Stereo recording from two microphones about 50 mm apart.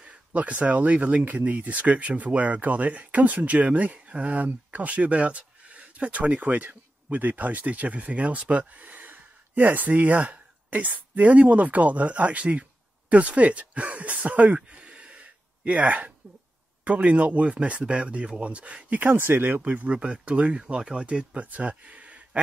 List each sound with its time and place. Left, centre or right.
0.0 s speech: right
19.6 s speech: right